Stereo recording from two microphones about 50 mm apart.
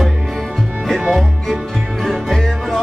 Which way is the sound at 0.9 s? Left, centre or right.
Centre.